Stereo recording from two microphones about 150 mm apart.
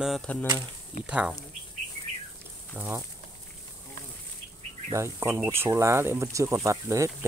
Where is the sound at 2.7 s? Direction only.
10° right (ahead or behind).